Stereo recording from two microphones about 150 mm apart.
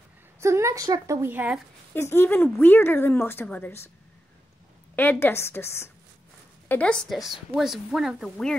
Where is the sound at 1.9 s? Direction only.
15° left (ahead or behind).